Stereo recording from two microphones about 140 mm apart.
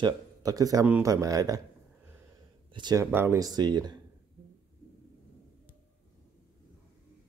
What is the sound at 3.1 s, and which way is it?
Speech, 20° right (ahead or behind).